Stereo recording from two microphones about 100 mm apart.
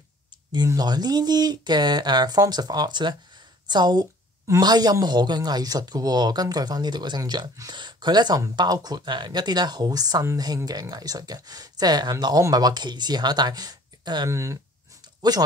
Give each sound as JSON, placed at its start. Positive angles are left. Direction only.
{"t": 0.7, "sound": "a woman's voice", "side_deg": -40}
{"t": 14.3, "sound": "speech", "side_deg": -30}
{"t": 15.2, "sound": "speech", "side_deg": -45}